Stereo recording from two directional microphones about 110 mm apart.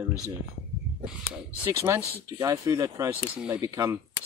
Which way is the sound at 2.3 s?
30° right (ahead or behind).